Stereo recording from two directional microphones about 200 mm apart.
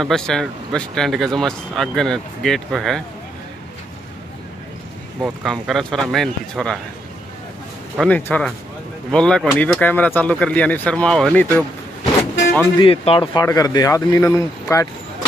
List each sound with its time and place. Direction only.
0.0 s speech: centre (ahead or behind)
5.2 s speech: centre (ahead or behind)
8.0 s speech: 10° left (ahead or behind)
12.7 s speech: 25° left (ahead or behind)